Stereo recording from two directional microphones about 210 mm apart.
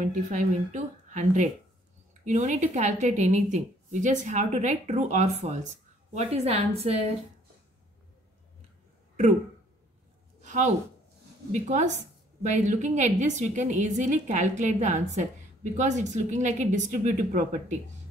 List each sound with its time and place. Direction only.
0.0 s a woman's voice: 35° right (ahead or behind)
10.4 s a sound: 35° right (ahead or behind)
11.5 s a woman's voice: 35° right (ahead or behind)